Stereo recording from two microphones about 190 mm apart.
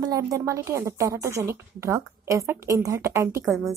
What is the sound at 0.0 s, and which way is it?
A woman's voice, 20° right (ahead or behind).